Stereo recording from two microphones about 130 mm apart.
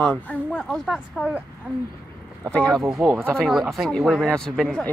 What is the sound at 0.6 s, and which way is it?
Speech, centre (ahead or behind).